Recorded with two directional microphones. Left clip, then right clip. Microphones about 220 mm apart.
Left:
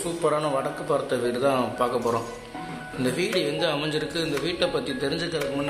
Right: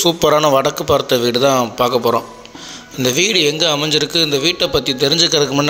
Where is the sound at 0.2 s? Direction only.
35° right (ahead or behind).